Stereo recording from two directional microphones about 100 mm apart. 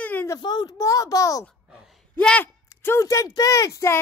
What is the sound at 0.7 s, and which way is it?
Speech, 35° left (ahead or behind).